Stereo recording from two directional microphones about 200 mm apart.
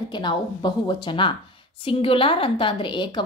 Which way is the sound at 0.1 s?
25° left (ahead or behind).